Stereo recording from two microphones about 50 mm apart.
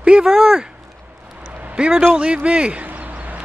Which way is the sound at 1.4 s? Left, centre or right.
Right.